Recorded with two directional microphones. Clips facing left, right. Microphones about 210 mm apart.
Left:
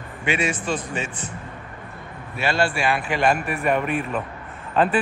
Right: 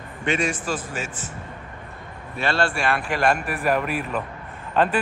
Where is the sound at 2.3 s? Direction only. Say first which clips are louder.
Left 1 dB; 5° left (ahead or behind).